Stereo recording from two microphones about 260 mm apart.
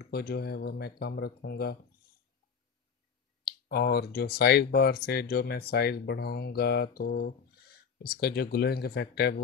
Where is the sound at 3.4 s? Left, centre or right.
Left.